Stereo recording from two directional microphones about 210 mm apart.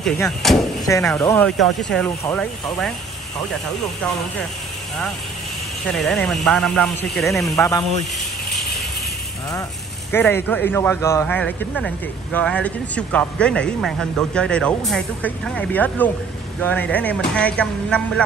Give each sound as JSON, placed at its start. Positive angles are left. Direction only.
{"t": 0.0, "sound": "speech", "side_deg": 0}
{"t": 0.9, "sound": "speech", "side_deg": 15}
{"t": 5.9, "sound": "speech", "side_deg": 0}
{"t": 7.4, "sound": "speech", "side_deg": 15}
{"t": 10.1, "sound": "speech", "side_deg": 10}